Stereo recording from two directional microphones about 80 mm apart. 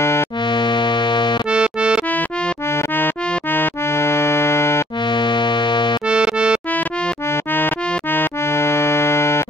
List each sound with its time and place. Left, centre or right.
0.0 s music: left
0.5 s music: left
1.5 s accordion: centre
2.0 s music: left
5.0 s music: left
6.0 s accordion: centre
7.2 s music: left
8.1 s accordion: left